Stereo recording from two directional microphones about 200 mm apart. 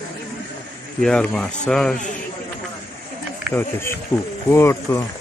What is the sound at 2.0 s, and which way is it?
Speech, 40° left (ahead or behind).